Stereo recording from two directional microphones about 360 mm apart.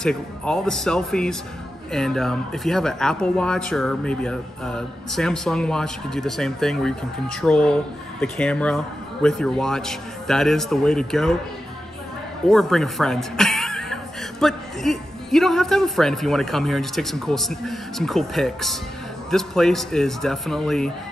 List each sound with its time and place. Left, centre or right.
0.0 s speech: centre
12.4 s speech: centre